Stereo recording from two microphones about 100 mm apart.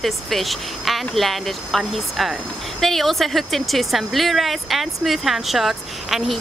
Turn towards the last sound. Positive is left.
turn(degrees=0)  # may be behind; listen again after turning